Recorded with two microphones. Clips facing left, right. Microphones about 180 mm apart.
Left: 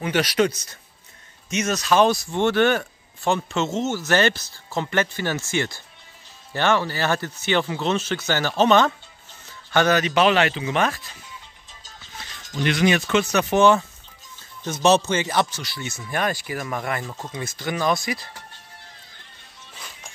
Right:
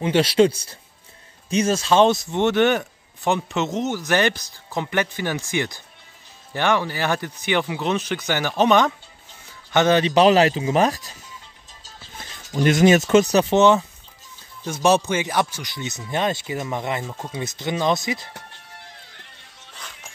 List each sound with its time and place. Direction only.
0.0 s speech: 25° right (ahead or behind)
12.4 s speech: 40° right (ahead or behind); by 18.3 s 20° right (ahead or behind)